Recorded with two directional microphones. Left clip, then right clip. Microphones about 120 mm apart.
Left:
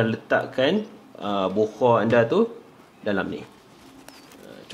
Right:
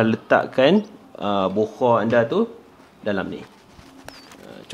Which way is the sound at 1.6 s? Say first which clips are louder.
Left 1 dB; 25° right (ahead or behind).